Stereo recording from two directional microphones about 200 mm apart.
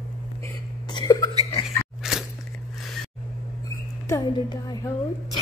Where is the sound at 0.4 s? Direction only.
20° left (ahead or behind).